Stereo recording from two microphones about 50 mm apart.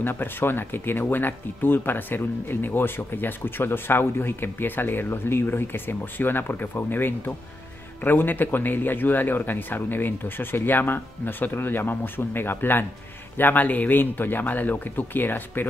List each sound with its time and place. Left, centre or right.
0.0 s speech: left